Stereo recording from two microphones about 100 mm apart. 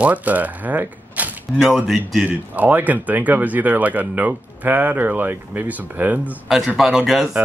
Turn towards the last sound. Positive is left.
turn(degrees=-5)  # may be behind; listen again after turning